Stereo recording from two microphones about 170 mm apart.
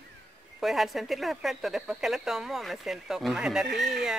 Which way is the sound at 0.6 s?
Centre (ahead or behind).